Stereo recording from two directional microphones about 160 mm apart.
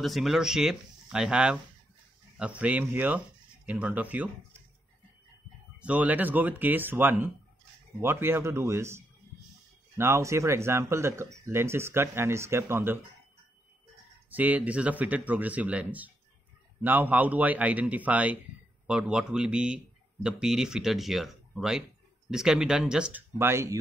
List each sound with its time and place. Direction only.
0.0 s speech: centre (ahead or behind)
5.8 s speech: 10° right (ahead or behind)
14.3 s speech: 10° right (ahead or behind)